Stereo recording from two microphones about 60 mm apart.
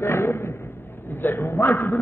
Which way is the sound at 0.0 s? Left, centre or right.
Left.